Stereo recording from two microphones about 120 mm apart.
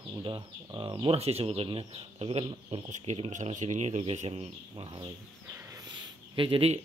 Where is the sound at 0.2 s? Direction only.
40° right (ahead or behind).